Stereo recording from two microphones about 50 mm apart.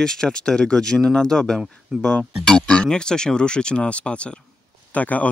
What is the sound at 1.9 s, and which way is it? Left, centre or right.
Speech, centre.